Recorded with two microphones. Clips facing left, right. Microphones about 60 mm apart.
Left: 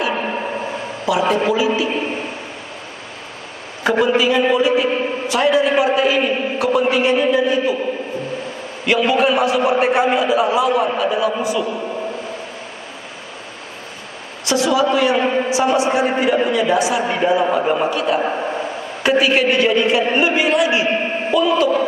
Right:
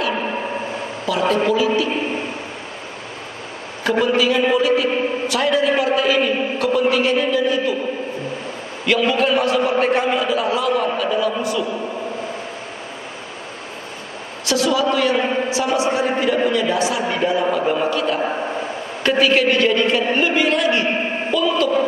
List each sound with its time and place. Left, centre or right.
1.0 s a man's voice: centre
3.8 s a man's voice: centre
8.8 s a man's voice: centre
14.5 s a man's voice: centre